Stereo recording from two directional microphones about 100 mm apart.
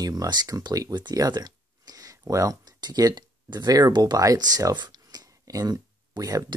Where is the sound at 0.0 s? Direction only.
40° right (ahead or behind).